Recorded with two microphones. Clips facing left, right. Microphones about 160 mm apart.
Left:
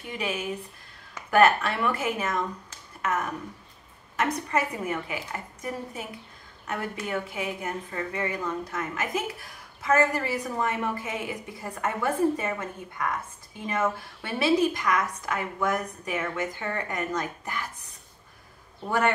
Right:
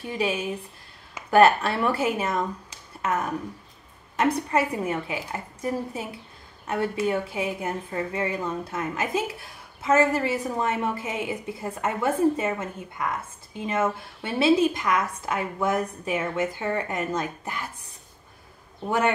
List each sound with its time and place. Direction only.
0.0 s a woman's voice: 30° right (ahead or behind)
4.2 s a woman's voice: 30° right (ahead or behind)
7.1 s a woman's voice: 30° right (ahead or behind)
18.9 s a woman's voice: 20° right (ahead or behind)